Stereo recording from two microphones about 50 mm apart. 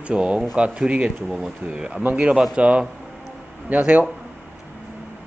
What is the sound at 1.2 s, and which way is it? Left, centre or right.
Speech, centre.